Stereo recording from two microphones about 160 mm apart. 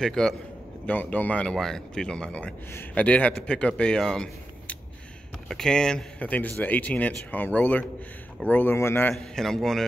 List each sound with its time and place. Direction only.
0.0 s a man's voice: 5° left (ahead or behind)
9.1 s a man's voice: centre (ahead or behind)